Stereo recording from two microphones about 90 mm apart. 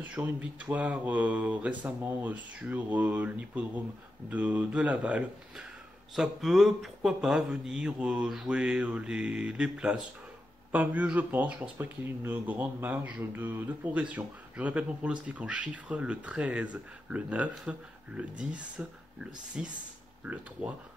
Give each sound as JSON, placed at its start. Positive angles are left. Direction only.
{"t": 0.0, "sound": "speech", "side_deg": -15}
{"t": 6.1, "sound": "speech", "side_deg": -5}
{"t": 20.2, "sound": "speech", "side_deg": -20}